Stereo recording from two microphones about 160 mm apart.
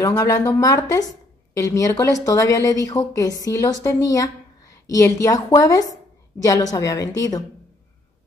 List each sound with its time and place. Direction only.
0.0 s a woman's voice: 20° left (ahead or behind)